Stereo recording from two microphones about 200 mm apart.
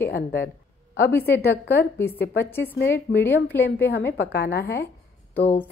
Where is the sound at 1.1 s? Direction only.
10° left (ahead or behind).